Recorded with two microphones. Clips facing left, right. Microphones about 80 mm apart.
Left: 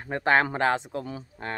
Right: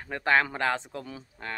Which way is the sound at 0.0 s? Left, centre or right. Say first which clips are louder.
Left 2 dB; left.